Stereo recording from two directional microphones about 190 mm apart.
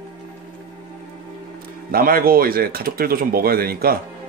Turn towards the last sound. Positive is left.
turn(degrees=-50)  # may be behind; listen again after turning